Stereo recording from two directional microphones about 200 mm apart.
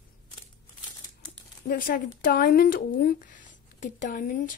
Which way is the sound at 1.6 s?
45° left (ahead or behind).